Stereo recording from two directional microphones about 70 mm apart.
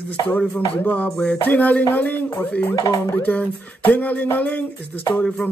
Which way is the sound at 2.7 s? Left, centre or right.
Left.